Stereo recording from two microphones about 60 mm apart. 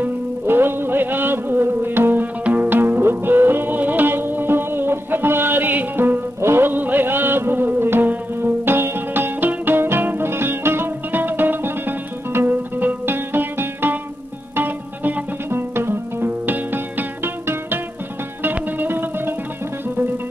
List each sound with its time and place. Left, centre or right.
0.0 s music: right